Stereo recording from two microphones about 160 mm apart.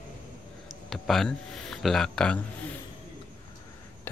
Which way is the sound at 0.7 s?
Centre (ahead or behind).